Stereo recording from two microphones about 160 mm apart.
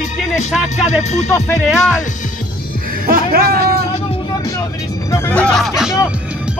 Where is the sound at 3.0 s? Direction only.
65° right (ahead or behind).